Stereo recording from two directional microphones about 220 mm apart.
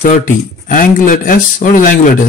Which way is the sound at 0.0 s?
35° left (ahead or behind).